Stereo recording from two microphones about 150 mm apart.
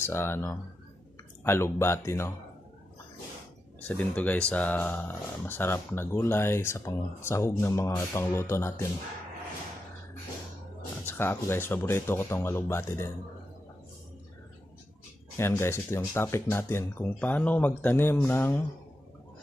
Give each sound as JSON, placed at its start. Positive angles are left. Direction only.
{"t": 0.0, "sound": "speech", "side_deg": 15}
{"t": 3.8, "sound": "speech", "side_deg": 10}
{"t": 11.1, "sound": "speech", "side_deg": 15}
{"t": 15.3, "sound": "speech", "side_deg": 15}